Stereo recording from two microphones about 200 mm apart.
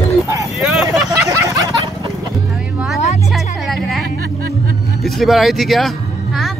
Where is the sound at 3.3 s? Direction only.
Centre (ahead or behind).